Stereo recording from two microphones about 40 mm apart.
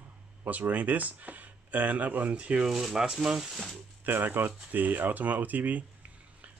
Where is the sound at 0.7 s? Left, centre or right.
Right.